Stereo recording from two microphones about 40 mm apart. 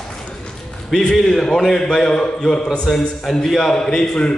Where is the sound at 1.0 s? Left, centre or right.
Centre.